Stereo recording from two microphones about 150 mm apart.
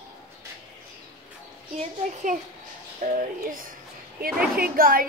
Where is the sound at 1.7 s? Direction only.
60° right (ahead or behind).